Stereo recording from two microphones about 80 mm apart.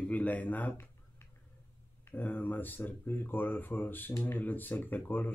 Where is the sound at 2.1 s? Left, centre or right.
Left.